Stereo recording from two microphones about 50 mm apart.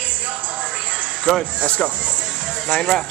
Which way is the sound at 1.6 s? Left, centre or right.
Left.